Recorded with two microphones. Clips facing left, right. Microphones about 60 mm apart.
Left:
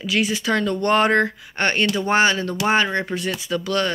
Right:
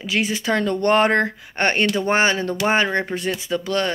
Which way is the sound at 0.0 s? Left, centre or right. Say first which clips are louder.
Left 1 dB; right.